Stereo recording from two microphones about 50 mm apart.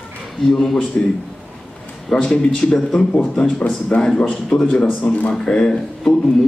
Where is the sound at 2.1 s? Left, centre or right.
Centre.